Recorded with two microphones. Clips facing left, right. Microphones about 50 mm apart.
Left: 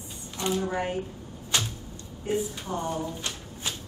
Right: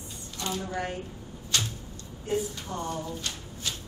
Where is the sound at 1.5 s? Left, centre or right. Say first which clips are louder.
Left 1 dB; centre.